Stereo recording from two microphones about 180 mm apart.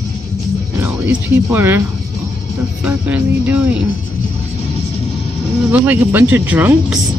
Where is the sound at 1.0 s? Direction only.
10° right (ahead or behind).